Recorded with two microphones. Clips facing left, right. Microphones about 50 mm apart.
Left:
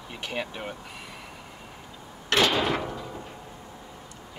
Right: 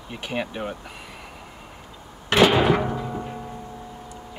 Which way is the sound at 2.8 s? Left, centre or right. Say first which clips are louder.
Right 7 dB; right.